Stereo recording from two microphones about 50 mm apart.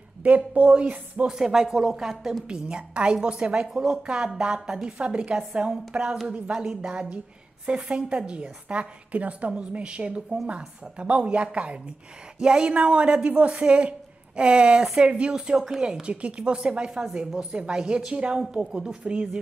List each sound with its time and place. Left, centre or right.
0.2 s a woman's voice: right
1.2 s a woman's voice: centre
2.4 s a woman's voice: centre